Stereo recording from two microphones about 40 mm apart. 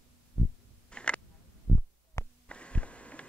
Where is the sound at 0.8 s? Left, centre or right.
Left.